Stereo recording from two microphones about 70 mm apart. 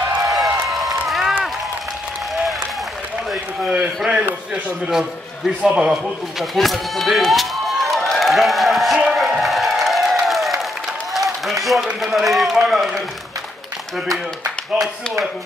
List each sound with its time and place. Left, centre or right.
0.3 s a sound: centre
3.3 s speech: centre
5.6 s a man's voice: centre
6.4 s speech: centre
9.0 s music: centre
10.2 s applause: centre
12.0 s a man's voice: centre